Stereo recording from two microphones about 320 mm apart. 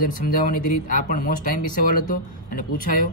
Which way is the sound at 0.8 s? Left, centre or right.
Left.